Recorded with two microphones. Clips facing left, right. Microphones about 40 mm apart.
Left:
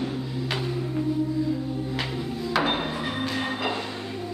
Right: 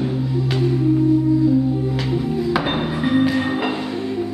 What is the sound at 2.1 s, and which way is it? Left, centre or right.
Music, centre.